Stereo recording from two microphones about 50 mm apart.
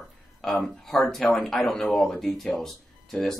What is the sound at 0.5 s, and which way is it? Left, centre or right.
Speech, centre.